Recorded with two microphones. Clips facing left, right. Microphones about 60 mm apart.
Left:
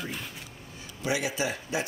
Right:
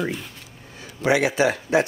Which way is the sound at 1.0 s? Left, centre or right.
Right.